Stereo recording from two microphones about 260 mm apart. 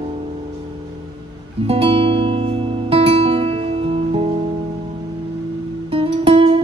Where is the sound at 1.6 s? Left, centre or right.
Right.